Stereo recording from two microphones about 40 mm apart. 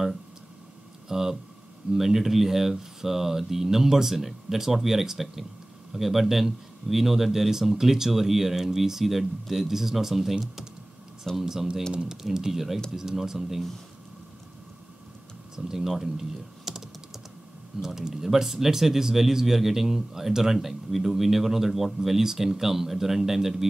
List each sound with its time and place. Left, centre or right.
1.0 s speech: centre
11.3 s speech: centre
11.9 s speech: right
12.2 s speech: centre
15.5 s speech: centre
17.8 s speech: centre